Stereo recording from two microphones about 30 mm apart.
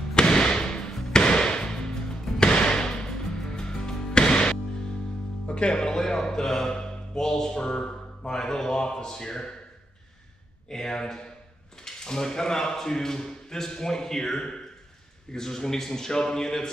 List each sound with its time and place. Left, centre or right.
0.1 s music: left
2.4 s a sound: left
3.1 s music: centre
5.5 s speech: left
8.3 s a man's voice: centre
10.7 s a man's voice: centre